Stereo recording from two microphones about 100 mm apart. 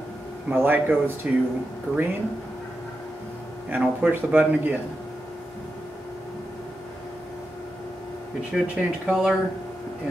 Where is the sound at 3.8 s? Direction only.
15° right (ahead or behind).